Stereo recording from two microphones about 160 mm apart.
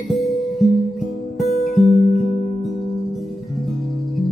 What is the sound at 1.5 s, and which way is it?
Music, 40° left (ahead or behind).